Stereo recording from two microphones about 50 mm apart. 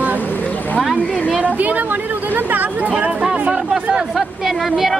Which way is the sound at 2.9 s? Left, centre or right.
Right.